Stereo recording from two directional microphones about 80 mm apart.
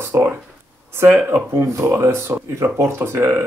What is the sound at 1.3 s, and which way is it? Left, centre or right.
Speech, right.